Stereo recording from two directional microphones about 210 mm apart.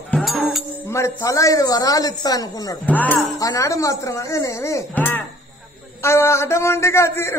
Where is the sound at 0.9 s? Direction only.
15° left (ahead or behind).